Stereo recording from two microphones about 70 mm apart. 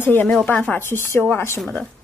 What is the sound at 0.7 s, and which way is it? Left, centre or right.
Speech, left.